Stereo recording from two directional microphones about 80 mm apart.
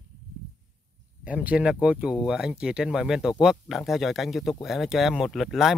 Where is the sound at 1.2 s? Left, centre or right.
Centre.